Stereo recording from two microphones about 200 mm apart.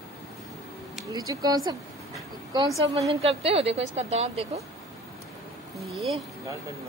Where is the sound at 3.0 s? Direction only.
30° right (ahead or behind).